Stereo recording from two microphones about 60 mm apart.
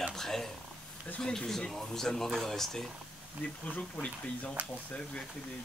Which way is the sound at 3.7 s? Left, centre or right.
Left.